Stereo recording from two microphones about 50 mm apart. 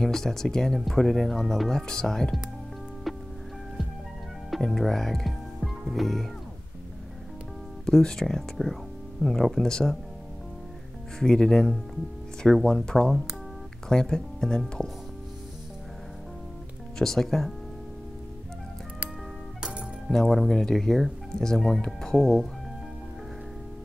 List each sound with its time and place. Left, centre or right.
0.0 s speech: centre
3.1 s music: centre
4.6 s speech: centre
7.8 s speech: centre
11.1 s speech: centre
17.0 s speech: centre
19.6 s music: centre
20.1 s speech: centre